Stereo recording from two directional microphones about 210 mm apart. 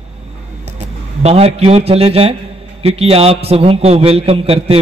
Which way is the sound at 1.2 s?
30° right (ahead or behind).